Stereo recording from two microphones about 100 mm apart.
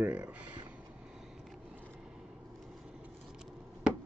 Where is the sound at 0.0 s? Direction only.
10° right (ahead or behind).